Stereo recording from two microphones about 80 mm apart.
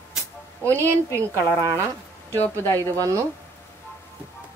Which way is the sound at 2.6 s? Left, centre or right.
Left.